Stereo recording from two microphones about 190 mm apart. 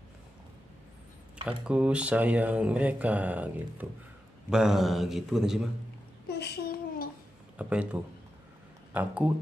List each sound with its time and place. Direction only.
1.6 s a man's voice: 5° right (ahead or behind)
6.3 s a sound: 60° left (ahead or behind)
7.5 s speech: 5° right (ahead or behind)